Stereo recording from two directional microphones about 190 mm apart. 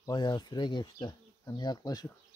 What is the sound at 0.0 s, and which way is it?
Speech, 20° left (ahead or behind).